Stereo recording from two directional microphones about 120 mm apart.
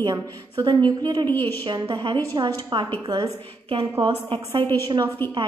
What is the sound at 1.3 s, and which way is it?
Speech, 15° left (ahead or behind).